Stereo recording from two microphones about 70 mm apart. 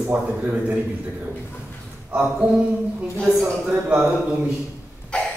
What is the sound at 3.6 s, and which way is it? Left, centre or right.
Speech, right.